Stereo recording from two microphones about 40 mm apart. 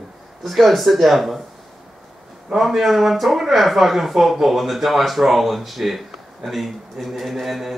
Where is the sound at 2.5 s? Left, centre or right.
Centre.